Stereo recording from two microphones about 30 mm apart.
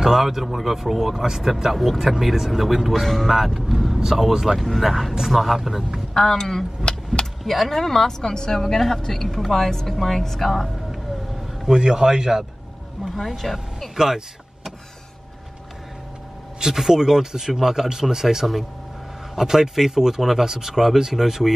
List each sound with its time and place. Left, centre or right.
0.2 s speech: centre
2.9 s speech: centre
3.3 s speech: centre
4.6 s speech: centre
6.1 s speech: centre
7.1 s speech: centre
7.4 s speech: centre
8.3 s a woman's voice: left
8.5 s speech: centre
11.7 s a man's voice: right
13.1 s speech: centre
13.9 s a man's voice: centre
16.5 s speech: centre